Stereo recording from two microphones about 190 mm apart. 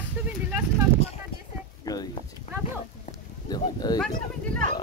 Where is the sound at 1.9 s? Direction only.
15° left (ahead or behind).